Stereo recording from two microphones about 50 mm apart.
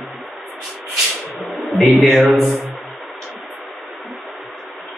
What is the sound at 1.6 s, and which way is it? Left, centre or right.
Speech, centre.